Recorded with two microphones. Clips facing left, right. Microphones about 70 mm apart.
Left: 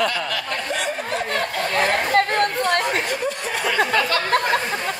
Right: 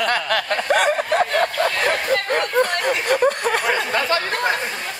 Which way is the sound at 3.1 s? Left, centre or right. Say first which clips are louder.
Right 7 dB; right.